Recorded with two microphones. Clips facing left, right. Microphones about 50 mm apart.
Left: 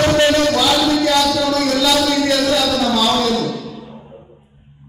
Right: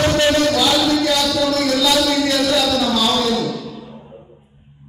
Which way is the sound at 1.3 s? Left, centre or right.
Centre.